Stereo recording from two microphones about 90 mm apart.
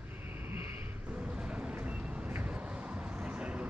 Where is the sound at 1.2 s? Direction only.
10° right (ahead or behind).